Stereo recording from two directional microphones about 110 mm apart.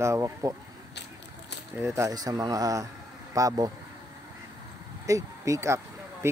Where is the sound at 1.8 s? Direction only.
25° right (ahead or behind).